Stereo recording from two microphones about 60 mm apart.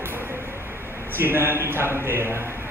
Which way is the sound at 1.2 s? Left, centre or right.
Right.